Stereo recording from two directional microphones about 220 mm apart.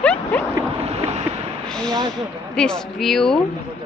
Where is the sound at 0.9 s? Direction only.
30° right (ahead or behind).